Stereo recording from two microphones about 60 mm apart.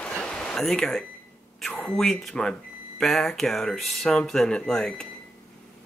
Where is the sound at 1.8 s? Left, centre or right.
Centre.